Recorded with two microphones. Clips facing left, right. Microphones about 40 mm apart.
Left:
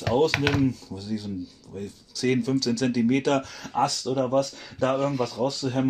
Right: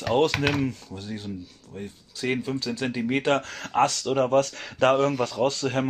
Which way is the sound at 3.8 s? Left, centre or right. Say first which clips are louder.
Right 2 dB; right.